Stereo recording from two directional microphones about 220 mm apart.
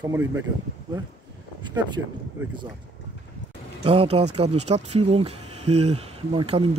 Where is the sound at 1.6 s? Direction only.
20° right (ahead or behind).